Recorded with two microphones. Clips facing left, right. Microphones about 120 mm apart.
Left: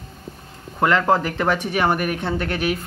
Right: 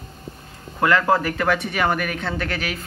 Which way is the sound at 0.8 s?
25° left (ahead or behind).